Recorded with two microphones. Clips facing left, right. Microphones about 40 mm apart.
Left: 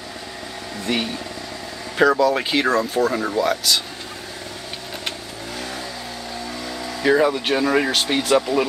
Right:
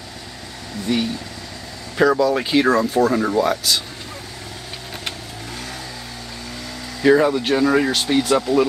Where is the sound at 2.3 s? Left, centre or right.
Centre.